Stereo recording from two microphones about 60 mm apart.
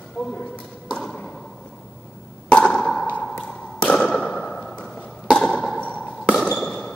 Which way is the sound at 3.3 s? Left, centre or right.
Centre.